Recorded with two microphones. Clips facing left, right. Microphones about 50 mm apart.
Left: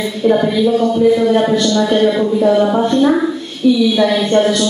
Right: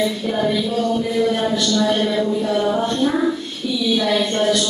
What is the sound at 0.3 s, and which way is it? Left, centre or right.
Speech, left.